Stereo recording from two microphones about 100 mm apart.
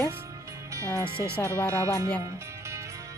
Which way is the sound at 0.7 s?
30° right (ahead or behind).